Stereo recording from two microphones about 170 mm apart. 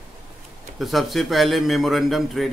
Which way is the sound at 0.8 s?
Centre (ahead or behind).